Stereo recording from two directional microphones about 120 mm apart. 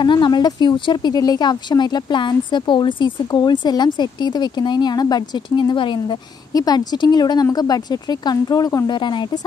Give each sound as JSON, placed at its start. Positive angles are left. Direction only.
{"t": 0.0, "sound": "speech", "side_deg": 40}